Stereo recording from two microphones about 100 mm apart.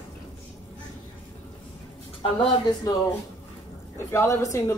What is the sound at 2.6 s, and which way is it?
Speech, 45° left (ahead or behind).